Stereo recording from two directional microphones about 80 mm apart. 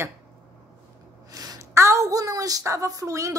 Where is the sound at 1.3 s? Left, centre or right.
Right.